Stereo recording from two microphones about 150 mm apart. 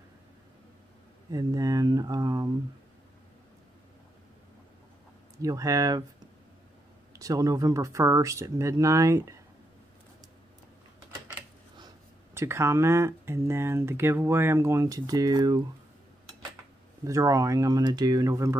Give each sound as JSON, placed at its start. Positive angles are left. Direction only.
{"t": 1.3, "sound": "a sound", "side_deg": -25}
{"t": 5.4, "sound": "speech", "side_deg": -20}
{"t": 7.2, "sound": "speech", "side_deg": -25}
{"t": 12.4, "sound": "speech", "side_deg": -15}
{"t": 17.0, "sound": "speech", "side_deg": -20}